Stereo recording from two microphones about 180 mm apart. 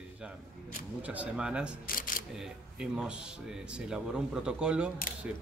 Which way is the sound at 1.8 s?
50° left (ahead or behind).